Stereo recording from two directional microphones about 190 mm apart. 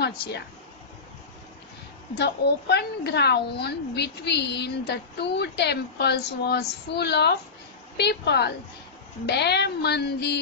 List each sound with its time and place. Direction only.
0.0 s speech: 60° left (ahead or behind)
2.1 s a woman's voice: 60° left (ahead or behind)